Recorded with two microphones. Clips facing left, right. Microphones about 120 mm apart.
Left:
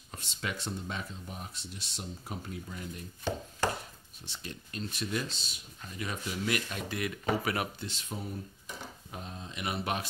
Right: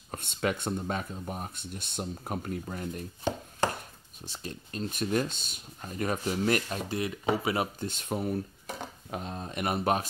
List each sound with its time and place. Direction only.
0.1 s speech: 55° right (ahead or behind)
4.3 s speech: 35° right (ahead or behind)
7.8 s speech: 50° right (ahead or behind)